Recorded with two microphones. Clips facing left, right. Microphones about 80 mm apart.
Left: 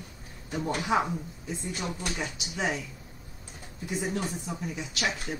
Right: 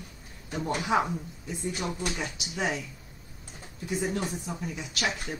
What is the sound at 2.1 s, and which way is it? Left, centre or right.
Speech, centre.